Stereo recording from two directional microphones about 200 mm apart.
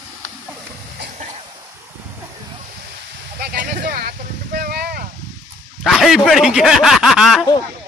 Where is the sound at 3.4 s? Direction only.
50° right (ahead or behind).